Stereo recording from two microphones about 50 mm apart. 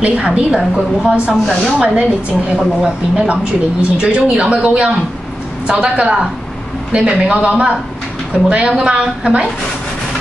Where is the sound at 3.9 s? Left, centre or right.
Centre.